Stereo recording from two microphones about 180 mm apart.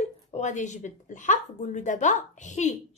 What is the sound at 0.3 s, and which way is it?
A woman's voice, 40° left (ahead or behind).